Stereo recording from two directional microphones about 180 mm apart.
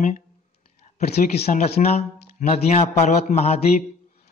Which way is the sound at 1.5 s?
40° left (ahead or behind).